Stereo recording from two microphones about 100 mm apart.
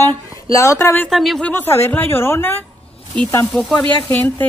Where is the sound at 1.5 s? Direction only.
25° left (ahead or behind).